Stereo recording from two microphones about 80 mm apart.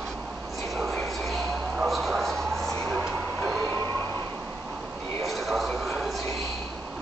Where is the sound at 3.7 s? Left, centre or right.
Left.